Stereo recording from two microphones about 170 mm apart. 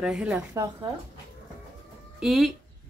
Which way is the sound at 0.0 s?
5° right (ahead or behind).